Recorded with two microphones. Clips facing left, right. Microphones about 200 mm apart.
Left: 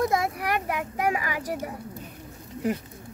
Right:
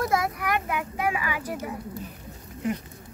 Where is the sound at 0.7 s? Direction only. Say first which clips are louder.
Left 1 dB; 40° left (ahead or behind).